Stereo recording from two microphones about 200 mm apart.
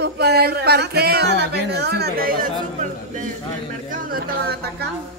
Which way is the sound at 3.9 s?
45° right (ahead or behind).